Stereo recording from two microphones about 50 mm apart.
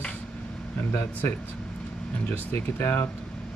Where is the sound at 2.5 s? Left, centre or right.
Left.